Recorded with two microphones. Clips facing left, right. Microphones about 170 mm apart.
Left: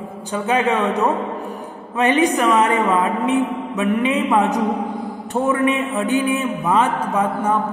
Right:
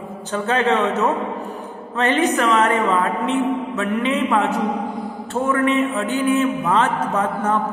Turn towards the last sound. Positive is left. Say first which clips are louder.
# left 1 dB
turn(degrees=10)  # may be behind; listen again after turning